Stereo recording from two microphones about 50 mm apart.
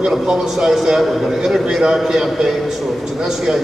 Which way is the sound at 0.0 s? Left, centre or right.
Centre.